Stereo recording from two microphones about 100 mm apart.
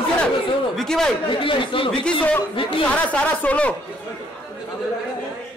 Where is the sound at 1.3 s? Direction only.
60° left (ahead or behind).